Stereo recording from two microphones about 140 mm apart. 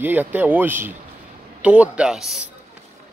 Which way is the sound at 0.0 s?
15° right (ahead or behind).